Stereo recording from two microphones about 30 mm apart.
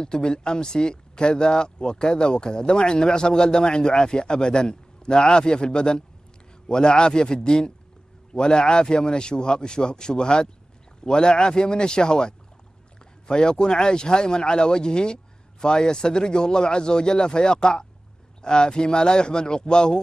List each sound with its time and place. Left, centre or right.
0.0 s speech: left